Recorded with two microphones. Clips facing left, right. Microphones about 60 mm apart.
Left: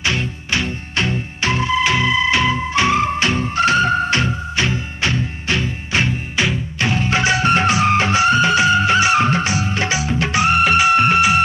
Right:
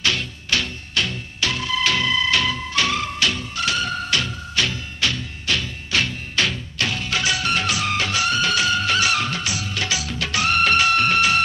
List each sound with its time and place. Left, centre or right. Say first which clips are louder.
0.0 s music: left 3 dB; left